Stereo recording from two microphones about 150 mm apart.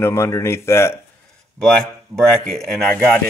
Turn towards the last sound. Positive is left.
turn(degrees=5)  # may be behind; listen again after turning